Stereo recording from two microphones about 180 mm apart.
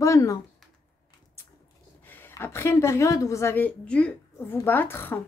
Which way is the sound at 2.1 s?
10° left (ahead or behind).